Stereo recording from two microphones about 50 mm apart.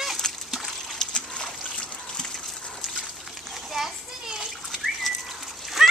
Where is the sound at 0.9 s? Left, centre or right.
Left.